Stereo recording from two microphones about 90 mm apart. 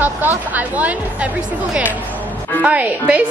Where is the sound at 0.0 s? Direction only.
20° right (ahead or behind).